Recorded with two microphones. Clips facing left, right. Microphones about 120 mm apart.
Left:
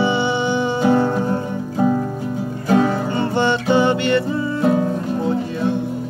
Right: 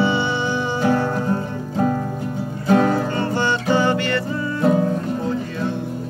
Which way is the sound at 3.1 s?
25° left (ahead or behind).